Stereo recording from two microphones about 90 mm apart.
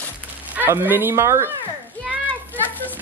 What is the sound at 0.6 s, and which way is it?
Speech, 25° right (ahead or behind).